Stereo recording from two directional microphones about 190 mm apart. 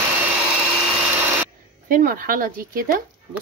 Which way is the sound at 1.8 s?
45° right (ahead or behind).